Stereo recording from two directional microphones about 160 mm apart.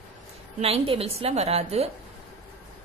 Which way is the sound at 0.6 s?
35° right (ahead or behind).